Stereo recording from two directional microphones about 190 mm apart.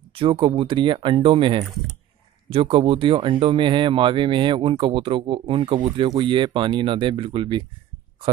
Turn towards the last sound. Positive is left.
turn(degrees=-25)  # may be behind; listen again after turning